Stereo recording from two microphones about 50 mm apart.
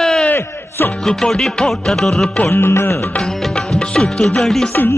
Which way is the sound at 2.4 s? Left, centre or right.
Left.